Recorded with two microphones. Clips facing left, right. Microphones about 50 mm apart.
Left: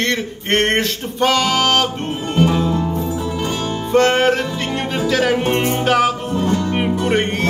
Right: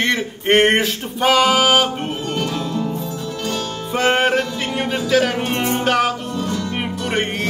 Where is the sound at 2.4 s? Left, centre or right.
Centre.